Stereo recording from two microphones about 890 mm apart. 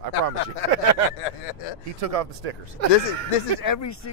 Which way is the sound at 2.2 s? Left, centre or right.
Right.